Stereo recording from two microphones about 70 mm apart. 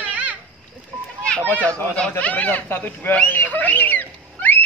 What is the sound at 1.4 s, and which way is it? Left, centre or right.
Speech, left.